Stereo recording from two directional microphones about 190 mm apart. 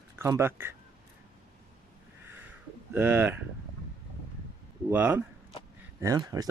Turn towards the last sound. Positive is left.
turn(degrees=-20)  # may be behind; listen again after turning